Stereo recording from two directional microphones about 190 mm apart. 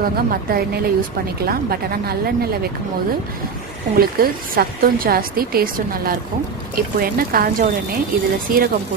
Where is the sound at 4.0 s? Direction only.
50° right (ahead or behind).